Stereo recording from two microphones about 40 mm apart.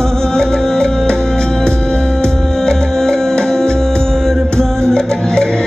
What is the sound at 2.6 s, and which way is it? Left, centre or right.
Music, centre.